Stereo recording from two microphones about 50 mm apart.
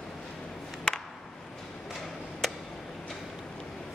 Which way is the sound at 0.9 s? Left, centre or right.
Centre.